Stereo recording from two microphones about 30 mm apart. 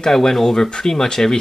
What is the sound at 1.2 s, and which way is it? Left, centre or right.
Speech, left.